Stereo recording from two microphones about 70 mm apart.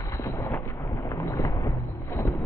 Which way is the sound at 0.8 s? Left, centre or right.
Left.